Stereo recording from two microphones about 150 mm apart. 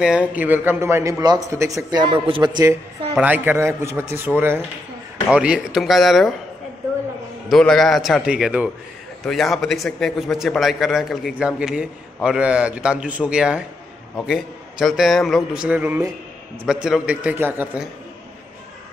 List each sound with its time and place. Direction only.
0.0 s a man's voice: 10° right (ahead or behind); by 2.7 s 30° right (ahead or behind)
3.2 s a man's voice: 10° right (ahead or behind)
7.4 s a man's voice: 5° left (ahead or behind); by 17.8 s 15° right (ahead or behind)